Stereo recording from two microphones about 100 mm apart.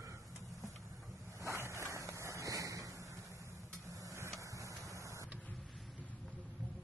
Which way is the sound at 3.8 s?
30° right (ahead or behind).